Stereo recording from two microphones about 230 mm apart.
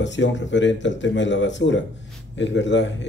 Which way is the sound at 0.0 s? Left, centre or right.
Left.